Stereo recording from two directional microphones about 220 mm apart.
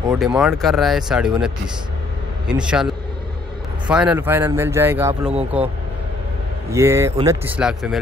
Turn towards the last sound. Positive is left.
turn(degrees=-5)  # may be behind; listen again after turning